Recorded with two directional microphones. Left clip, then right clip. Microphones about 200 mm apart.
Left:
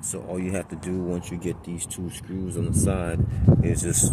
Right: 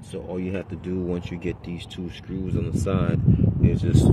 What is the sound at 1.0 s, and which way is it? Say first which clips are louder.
Speech: right 1 dB; 25° right (ahead or behind).